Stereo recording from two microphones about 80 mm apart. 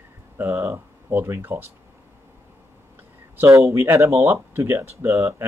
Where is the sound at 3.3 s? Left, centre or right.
Right.